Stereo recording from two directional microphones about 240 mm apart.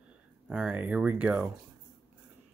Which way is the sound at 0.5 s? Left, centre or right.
Centre.